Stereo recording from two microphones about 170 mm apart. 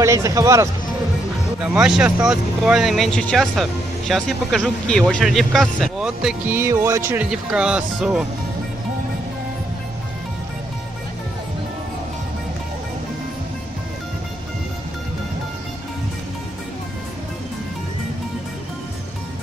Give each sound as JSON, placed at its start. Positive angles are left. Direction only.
{"t": 0.0, "sound": "speech", "side_deg": -20}
{"t": 1.6, "sound": "speech", "side_deg": -5}